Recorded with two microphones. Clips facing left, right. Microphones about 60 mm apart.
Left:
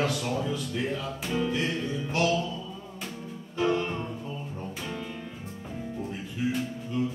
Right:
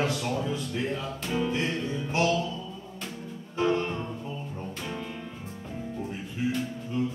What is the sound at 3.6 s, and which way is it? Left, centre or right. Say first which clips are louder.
Music: even; centre.